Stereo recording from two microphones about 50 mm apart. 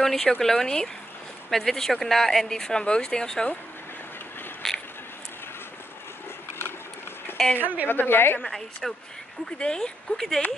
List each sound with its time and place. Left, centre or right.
0.0 s speech: centre
4.6 s a sound: centre
7.5 s a woman's voice: right
7.9 s a woman's voice: left
8.5 s speech: centre
9.6 s speech: centre